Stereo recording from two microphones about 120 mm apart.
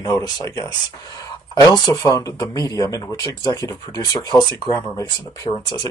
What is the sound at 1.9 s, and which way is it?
Speech, 30° left (ahead or behind).